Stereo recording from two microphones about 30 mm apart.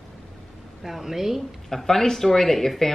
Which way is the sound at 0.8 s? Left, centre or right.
Centre.